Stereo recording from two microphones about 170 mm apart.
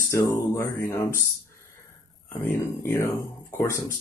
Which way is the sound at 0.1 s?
15° left (ahead or behind).